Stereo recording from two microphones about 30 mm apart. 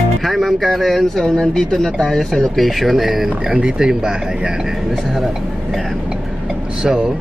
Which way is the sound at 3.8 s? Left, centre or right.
Right.